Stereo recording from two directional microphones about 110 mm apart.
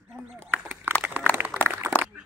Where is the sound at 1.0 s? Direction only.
20° right (ahead or behind).